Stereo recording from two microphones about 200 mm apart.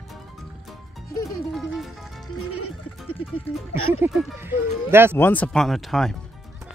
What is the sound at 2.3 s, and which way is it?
Music, 90° left.